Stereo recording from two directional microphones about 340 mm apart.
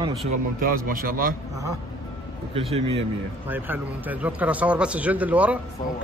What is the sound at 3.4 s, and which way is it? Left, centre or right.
Speech, centre.